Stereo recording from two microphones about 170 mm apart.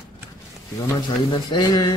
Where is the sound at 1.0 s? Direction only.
25° left (ahead or behind).